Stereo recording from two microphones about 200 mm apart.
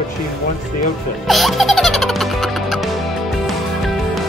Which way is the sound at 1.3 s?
Centre (ahead or behind).